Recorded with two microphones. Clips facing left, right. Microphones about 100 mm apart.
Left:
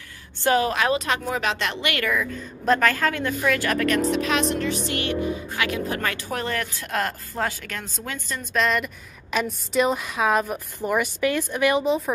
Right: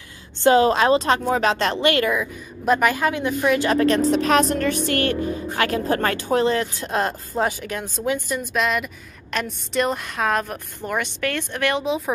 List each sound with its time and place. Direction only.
0.4 s a woman's voice: 25° right (ahead or behind)
2.0 s a woman's voice: 20° right (ahead or behind); by 6.2 s 35° right (ahead or behind)
6.2 s speech: 25° right (ahead or behind); by 12.0 s 5° left (ahead or behind)